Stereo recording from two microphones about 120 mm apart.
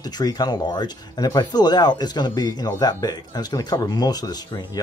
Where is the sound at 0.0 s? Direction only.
35° left (ahead or behind).